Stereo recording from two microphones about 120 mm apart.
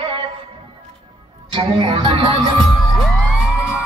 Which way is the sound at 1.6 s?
40° right (ahead or behind).